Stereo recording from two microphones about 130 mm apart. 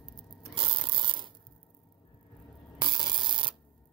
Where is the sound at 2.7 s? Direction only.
35° right (ahead or behind).